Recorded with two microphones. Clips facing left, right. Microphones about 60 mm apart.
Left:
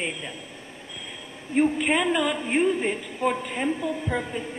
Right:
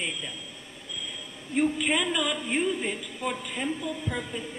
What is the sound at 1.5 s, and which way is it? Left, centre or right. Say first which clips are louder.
A woman's voice: left 4 dB; left.